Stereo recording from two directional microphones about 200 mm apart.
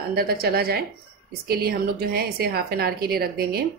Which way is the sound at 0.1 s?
50° right (ahead or behind).